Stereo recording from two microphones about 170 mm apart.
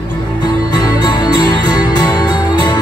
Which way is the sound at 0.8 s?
25° left (ahead or behind).